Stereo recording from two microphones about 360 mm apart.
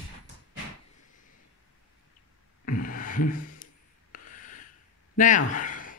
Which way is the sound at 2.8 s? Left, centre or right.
Left.